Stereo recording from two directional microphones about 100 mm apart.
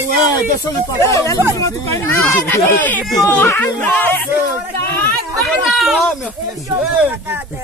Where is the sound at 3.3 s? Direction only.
20° left (ahead or behind).